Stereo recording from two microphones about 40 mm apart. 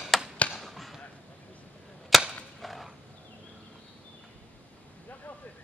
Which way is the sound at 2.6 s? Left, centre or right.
Centre.